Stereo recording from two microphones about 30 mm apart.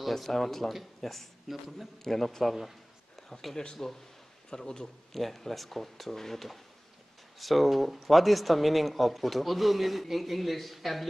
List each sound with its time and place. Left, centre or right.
0.1 s speech: centre
3.8 s a man's voice: centre
5.1 s speech: centre